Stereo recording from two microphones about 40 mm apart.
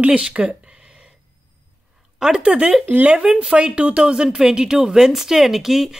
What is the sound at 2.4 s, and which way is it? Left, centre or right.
Speech, right.